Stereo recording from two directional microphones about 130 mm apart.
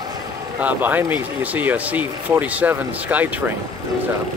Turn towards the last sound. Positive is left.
turn(degrees=-10)  # may be behind; listen again after turning